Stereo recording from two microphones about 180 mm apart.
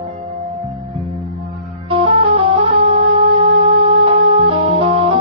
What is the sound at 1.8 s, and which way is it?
Music, 30° right (ahead or behind).